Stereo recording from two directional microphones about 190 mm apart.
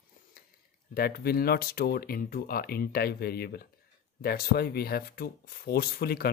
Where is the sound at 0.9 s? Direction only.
55° left (ahead or behind).